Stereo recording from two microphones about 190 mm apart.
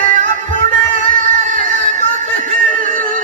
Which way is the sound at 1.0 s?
45° right (ahead or behind).